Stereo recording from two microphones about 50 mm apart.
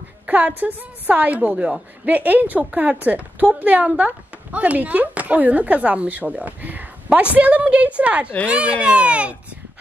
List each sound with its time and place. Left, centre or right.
0.3 s a woman's voice: right